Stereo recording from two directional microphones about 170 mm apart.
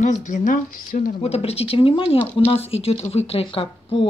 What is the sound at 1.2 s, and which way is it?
Speech, 35° left (ahead or behind).